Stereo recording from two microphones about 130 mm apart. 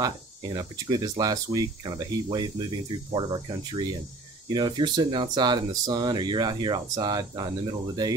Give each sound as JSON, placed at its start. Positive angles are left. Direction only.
{"t": 0.0, "sound": "speech", "side_deg": -35}